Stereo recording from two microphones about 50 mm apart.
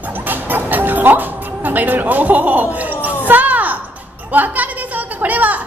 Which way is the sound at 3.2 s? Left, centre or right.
Right.